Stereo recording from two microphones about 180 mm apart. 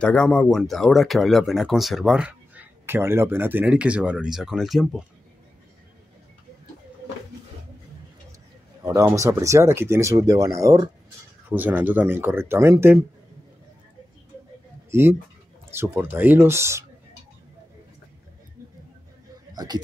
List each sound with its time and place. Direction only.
0.0 s speech: 5° left (ahead or behind)
8.8 s speech: 15° right (ahead or behind)
14.9 s speech: 15° right (ahead or behind)
19.5 s speech: 20° right (ahead or behind)